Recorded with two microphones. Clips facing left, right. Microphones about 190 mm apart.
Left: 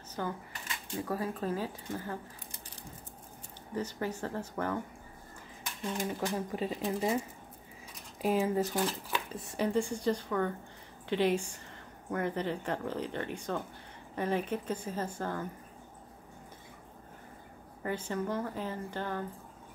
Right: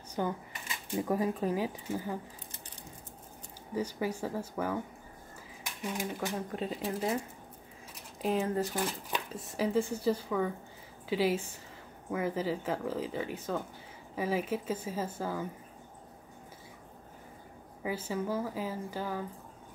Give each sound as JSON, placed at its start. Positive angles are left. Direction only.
{"t": 0.2, "sound": "speech", "side_deg": -15}
{"t": 3.7, "sound": "speech", "side_deg": -10}
{"t": 5.8, "sound": "speech", "side_deg": -15}
{"t": 6.3, "sound": "speech", "side_deg": 0}
{"t": 8.2, "sound": "speech", "side_deg": 5}
{"t": 17.8, "sound": "speech", "side_deg": -5}